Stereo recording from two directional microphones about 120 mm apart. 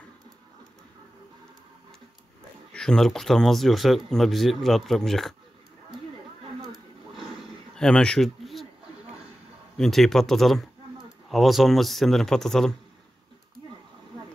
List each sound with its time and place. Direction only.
2.7 s speech: 5° left (ahead or behind)
7.7 s a sound: 5° left (ahead or behind)
9.8 s speech: 5° left (ahead or behind)